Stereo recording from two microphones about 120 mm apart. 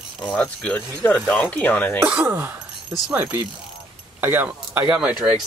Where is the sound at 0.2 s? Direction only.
5° left (ahead or behind).